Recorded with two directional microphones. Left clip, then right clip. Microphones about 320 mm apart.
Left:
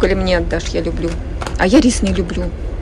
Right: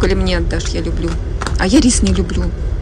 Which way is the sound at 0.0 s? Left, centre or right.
Centre.